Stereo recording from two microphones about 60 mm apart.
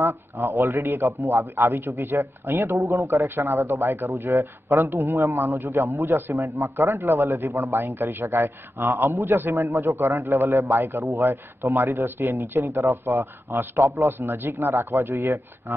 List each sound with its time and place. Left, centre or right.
0.0 s a man's voice: right
1.0 s a man's voice: right
1.9 s a man's voice: right
2.9 s a man's voice: right
3.3 s a man's voice: right
4.2 s a man's voice: right
4.7 s a man's voice: right
6.3 s a man's voice: right
7.0 s a man's voice: right
7.4 s a man's voice: right
10.8 s speech: right
11.1 s a man's voice: right
12.4 s a man's voice: right
14.1 s a man's voice: right